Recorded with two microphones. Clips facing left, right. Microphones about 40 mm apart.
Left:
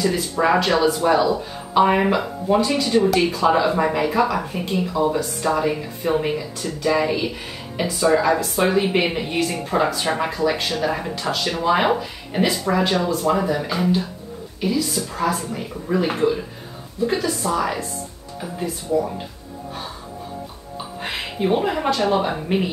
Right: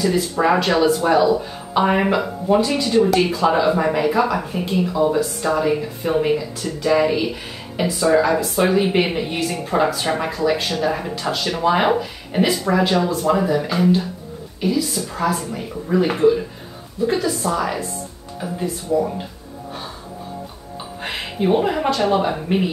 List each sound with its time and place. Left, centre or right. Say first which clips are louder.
0.0 s speech: right 2 dB; centre
18.9 s speech: right 2 dB; centre
21.0 s speech: right 1 dB; centre